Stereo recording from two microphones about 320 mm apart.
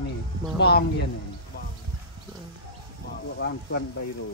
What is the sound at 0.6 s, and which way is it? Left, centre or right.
Speech, left.